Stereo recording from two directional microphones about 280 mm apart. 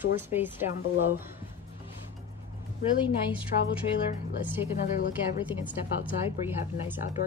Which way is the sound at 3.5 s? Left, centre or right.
Left.